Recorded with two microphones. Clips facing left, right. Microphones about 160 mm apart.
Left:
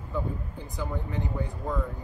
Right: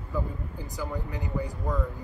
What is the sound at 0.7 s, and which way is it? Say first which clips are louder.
Speech: left 2 dB; 5° right (ahead or behind).